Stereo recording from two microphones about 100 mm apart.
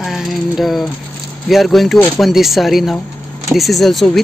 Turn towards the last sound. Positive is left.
turn(degrees=5)  # may be behind; listen again after turning